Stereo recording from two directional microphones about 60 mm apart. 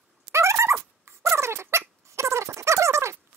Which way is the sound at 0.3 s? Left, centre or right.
Right.